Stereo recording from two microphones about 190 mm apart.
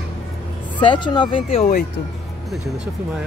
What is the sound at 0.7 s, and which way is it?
Speech, 25° left (ahead or behind).